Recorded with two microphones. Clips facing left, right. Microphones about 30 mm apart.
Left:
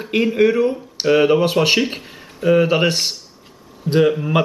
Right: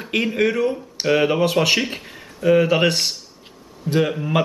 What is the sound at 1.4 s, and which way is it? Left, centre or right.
Speech, centre.